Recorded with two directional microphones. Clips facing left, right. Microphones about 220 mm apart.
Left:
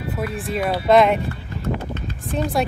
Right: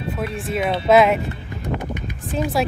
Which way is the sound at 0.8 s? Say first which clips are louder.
Even; 5° right (ahead or behind).